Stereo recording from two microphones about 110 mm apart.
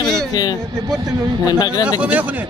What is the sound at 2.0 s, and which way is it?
Speech, 15° right (ahead or behind).